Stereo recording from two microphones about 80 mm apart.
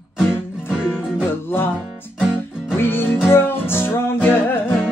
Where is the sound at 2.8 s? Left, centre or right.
Left.